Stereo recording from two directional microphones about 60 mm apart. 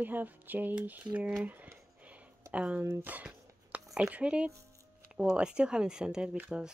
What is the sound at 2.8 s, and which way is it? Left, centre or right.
Speech, right.